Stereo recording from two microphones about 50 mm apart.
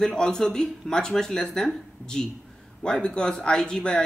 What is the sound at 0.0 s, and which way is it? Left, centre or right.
Speech, centre.